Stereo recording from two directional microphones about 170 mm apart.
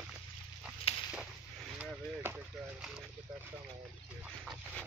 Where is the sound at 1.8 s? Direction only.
5° right (ahead or behind).